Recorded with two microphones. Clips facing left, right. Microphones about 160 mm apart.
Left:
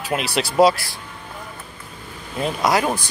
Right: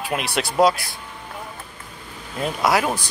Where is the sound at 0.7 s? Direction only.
20° right (ahead or behind).